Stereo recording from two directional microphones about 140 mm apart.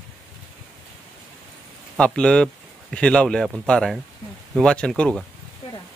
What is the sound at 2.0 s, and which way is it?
A man's voice, 5° left (ahead or behind).